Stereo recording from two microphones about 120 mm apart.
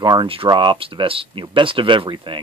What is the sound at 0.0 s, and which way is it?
Speech, 40° right (ahead or behind).